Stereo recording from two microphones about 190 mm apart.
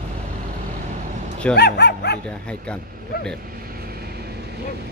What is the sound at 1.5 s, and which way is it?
Speech, 60° left (ahead or behind).